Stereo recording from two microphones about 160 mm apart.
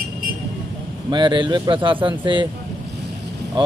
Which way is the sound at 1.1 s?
30° right (ahead or behind).